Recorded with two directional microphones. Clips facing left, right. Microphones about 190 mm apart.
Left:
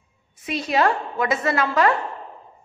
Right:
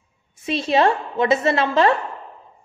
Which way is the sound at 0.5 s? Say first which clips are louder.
Right 3 dB; 25° right (ahead or behind).